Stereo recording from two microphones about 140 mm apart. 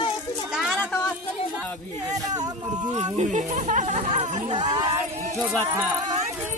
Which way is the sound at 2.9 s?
55° right (ahead or behind).